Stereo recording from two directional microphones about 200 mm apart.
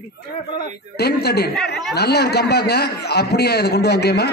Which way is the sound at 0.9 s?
55° left (ahead or behind).